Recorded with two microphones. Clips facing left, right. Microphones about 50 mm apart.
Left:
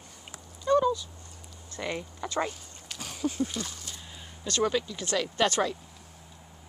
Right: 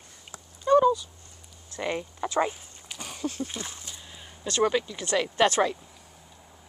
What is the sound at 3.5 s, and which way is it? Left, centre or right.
Speech, right.